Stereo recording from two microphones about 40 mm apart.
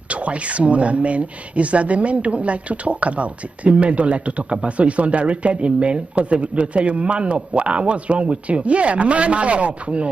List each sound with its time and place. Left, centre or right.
0.1 s speech: right